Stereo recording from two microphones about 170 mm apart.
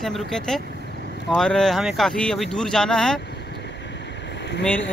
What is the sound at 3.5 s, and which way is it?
Vehicle, 85° left.